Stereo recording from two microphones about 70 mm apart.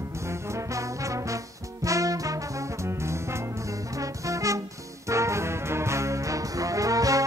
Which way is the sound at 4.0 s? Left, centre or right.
Right.